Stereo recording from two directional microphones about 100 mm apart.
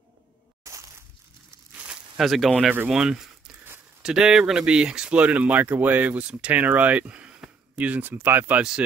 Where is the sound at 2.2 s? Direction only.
Centre (ahead or behind); by 8.6 s 20° right (ahead or behind).